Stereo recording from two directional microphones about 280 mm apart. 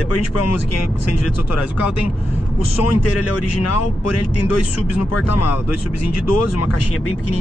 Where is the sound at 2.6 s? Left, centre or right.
Left.